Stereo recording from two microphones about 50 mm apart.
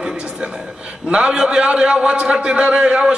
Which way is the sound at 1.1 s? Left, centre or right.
Centre.